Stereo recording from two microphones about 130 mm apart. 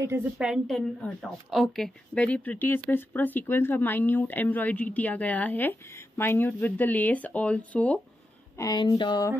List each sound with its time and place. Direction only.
0.0 s a woman's voice: 20° right (ahead or behind)
0.4 s a woman's voice: centre (ahead or behind)
8.5 s speech: 30° left (ahead or behind)